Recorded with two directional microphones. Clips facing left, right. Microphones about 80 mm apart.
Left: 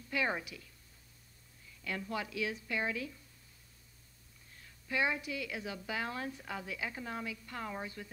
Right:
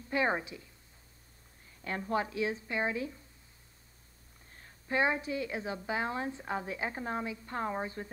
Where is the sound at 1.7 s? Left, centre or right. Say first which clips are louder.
Right 5 dB; right.